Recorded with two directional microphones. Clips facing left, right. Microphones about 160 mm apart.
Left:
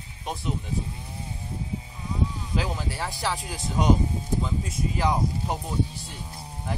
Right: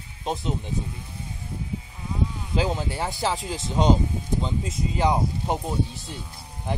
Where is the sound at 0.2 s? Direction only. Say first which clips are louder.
Right 3 dB; 25° right (ahead or behind).